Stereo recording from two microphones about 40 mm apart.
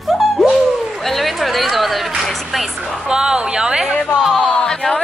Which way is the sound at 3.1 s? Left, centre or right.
Centre.